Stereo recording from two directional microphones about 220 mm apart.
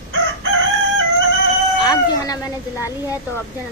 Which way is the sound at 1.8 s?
20° left (ahead or behind).